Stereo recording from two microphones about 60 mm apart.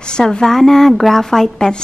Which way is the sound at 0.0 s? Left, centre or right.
Centre.